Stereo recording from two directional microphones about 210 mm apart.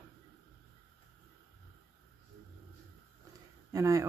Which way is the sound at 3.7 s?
15° right (ahead or behind).